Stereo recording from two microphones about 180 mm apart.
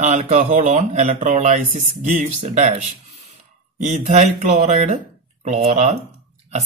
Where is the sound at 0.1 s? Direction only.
35° right (ahead or behind).